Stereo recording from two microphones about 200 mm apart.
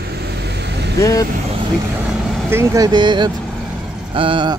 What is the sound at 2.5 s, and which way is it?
Speech, 15° right (ahead or behind).